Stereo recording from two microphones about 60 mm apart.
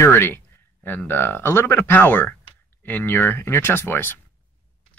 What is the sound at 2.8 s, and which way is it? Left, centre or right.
Speech, left.